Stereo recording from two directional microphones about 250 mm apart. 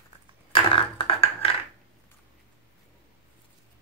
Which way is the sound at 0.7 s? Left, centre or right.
Left.